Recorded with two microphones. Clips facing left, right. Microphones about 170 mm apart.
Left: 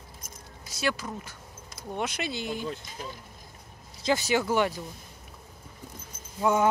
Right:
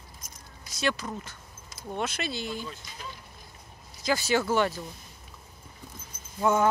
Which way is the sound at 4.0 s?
20° left (ahead or behind).